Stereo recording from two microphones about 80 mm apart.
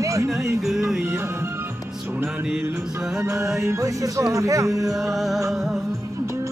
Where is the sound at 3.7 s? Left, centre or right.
Right.